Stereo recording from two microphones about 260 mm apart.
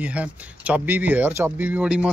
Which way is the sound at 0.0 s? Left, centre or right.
Centre.